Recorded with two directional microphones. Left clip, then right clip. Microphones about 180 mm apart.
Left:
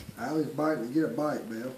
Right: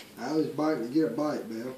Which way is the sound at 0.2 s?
15° left (ahead or behind).